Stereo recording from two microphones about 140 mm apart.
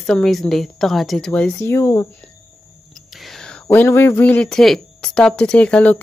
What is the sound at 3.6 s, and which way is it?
Speech, 15° left (ahead or behind).